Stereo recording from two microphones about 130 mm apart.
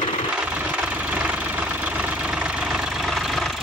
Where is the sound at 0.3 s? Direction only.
10° right (ahead or behind).